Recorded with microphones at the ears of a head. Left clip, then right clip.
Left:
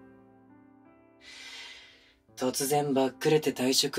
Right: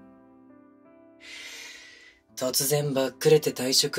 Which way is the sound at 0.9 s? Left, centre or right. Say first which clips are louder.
Right 6 dB; right.